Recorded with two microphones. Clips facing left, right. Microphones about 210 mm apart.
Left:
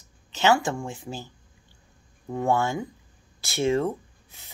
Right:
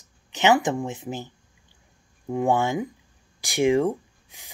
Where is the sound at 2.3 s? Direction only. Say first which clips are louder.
Right 2 dB; 15° right (ahead or behind).